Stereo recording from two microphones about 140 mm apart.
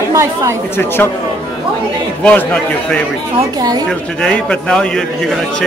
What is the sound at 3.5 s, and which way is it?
Speech, 25° right (ahead or behind).